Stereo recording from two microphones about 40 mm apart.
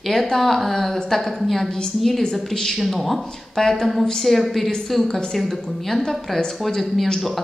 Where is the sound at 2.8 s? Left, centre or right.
Centre.